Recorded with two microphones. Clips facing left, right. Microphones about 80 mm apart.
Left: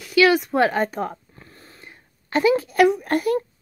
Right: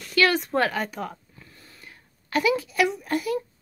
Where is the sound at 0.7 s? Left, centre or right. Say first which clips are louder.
Left 6 dB; left.